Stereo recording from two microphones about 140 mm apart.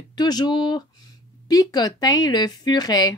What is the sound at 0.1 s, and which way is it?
A woman's voice, 30° left (ahead or behind).